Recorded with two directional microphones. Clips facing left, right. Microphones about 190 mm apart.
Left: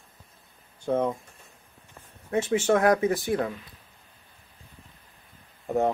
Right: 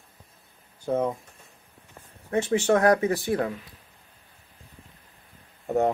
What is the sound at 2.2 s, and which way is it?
Speech, 35° right (ahead or behind).